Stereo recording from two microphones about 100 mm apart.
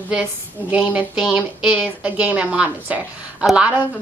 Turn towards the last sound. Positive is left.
turn(degrees=-15)  # may be behind; listen again after turning